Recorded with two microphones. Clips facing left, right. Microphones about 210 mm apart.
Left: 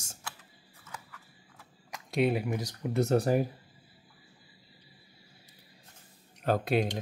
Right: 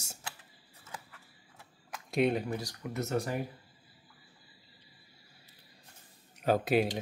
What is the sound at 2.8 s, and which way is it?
Speech, 35° left (ahead or behind).